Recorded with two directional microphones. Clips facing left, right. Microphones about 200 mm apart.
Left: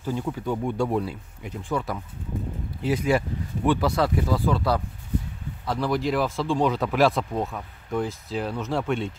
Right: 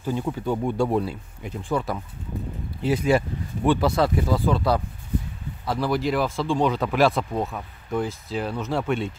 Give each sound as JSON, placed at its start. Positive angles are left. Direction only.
{"t": 0.0, "sound": "speech", "side_deg": -20}
{"t": 5.7, "sound": "speech", "side_deg": -5}